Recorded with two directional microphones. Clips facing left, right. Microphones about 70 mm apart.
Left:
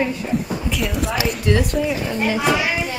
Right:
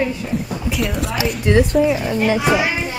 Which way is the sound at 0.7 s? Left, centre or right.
Centre.